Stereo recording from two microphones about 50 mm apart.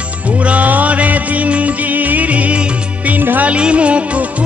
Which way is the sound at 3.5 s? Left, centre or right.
Right.